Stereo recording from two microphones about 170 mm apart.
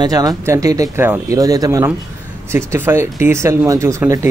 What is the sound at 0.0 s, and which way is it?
Speech, 25° right (ahead or behind).